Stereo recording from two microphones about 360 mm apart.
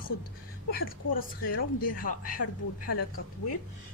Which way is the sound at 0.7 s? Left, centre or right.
Left.